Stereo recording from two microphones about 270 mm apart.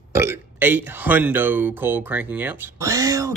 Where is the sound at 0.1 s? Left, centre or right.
Centre.